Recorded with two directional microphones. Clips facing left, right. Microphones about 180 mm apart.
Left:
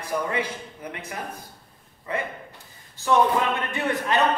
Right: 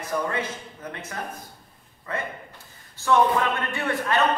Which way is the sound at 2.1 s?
15° left (ahead or behind).